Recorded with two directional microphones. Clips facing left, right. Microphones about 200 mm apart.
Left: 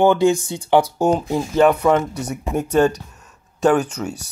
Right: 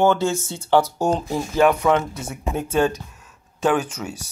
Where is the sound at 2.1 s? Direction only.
70° left (ahead or behind).